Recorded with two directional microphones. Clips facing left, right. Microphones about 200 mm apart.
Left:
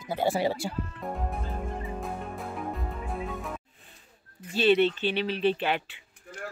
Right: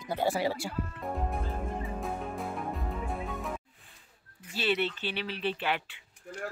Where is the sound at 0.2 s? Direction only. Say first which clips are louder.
Left 3 dB; 20° left (ahead or behind).